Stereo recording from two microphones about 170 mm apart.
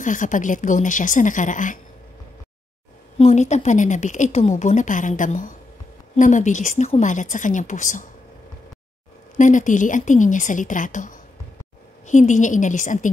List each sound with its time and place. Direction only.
0.0 s a woman's voice: 50° left (ahead or behind)
3.2 s a woman's voice: 40° left (ahead or behind)
9.4 s a woman's voice: 45° left (ahead or behind)